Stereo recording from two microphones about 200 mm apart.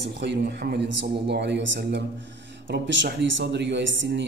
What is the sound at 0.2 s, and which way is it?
A man's voice, 55° right (ahead or behind).